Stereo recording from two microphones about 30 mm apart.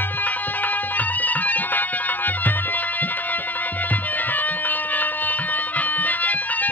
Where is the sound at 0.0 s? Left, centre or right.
Left.